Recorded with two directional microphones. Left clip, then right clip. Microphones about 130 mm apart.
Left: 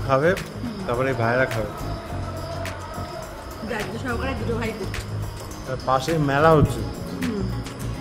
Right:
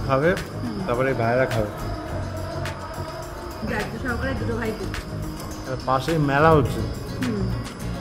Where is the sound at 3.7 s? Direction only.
30° left (ahead or behind).